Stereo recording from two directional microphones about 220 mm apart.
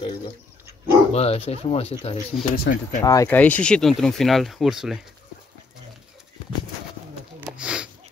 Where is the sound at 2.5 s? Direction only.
40° left (ahead or behind).